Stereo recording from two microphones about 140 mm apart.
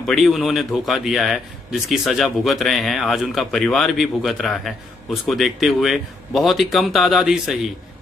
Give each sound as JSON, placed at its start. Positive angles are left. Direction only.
{"t": 0.0, "sound": "a man's voice", "side_deg": 0}